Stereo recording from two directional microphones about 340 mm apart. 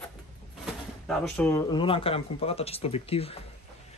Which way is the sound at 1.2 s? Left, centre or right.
Centre.